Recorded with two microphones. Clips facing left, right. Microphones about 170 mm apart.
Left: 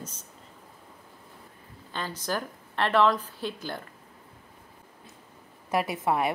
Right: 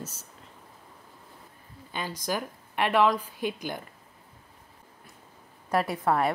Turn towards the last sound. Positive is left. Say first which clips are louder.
# right 1 dB
turn(degrees=15)  # may be behind; listen again after turning